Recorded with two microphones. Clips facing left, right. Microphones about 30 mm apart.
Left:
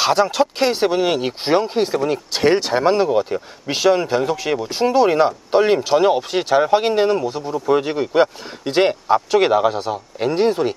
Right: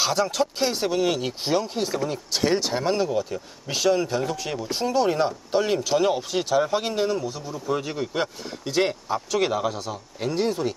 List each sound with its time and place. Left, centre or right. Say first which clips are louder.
0.0 s speech: left 7 dB; left